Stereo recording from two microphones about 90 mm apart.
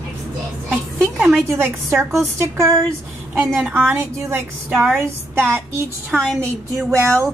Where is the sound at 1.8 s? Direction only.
30° right (ahead or behind).